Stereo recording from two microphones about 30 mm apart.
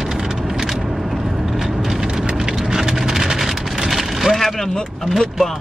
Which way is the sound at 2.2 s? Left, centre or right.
Right.